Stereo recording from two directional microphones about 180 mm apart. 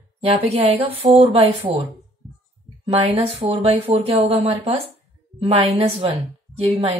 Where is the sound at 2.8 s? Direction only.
35° right (ahead or behind).